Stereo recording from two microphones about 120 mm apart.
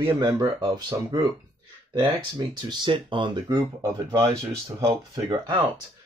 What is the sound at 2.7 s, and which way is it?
Speech, 40° right (ahead or behind).